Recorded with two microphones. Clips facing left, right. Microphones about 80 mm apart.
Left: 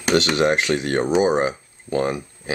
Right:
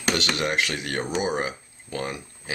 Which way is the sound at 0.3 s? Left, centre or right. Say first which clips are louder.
Left 7 dB; left.